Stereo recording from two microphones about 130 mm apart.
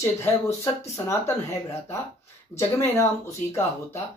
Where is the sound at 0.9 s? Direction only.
20° left (ahead or behind).